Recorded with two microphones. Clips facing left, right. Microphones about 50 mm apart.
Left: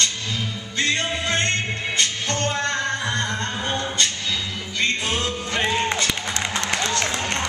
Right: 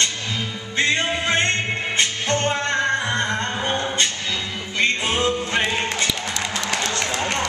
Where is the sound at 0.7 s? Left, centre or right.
Right.